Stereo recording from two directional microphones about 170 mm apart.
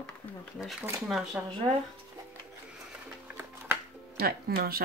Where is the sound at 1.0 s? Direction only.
5° right (ahead or behind).